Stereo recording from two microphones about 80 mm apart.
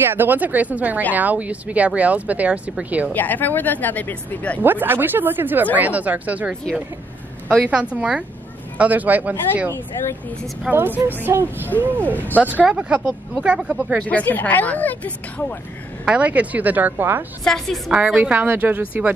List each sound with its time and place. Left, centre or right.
0.1 s speech: right
3.1 s speech: left
4.6 s speech: right
10.7 s speech: centre
11.1 s speech: right
14.0 s speech: centre
16.1 s speech: centre
17.5 s a woman's voice: centre
17.9 s speech: centre